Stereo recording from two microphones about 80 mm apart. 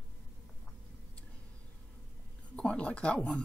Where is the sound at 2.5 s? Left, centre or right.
Centre.